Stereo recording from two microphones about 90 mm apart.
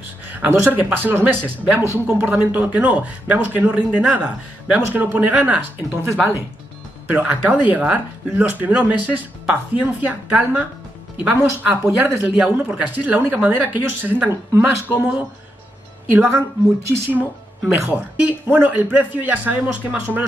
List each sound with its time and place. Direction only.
0.3 s speech: 20° right (ahead or behind)
7.1 s speech: 20° right (ahead or behind)
17.2 s speech: 15° right (ahead or behind)